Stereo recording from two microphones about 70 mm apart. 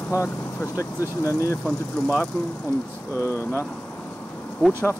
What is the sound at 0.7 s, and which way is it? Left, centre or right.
Speech, left.